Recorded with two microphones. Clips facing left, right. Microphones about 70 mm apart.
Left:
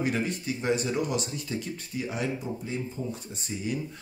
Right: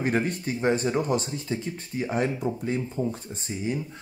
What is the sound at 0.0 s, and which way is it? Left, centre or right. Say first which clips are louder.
Speech: right 3 dB; right.